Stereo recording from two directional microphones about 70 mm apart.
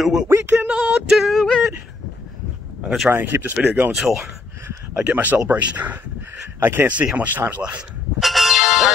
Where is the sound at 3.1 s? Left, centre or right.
Right.